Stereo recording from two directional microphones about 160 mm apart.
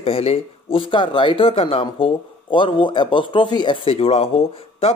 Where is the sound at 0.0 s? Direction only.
40° left (ahead or behind).